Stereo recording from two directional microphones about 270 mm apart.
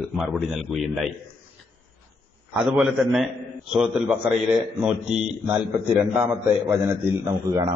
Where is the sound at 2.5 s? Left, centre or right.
Centre.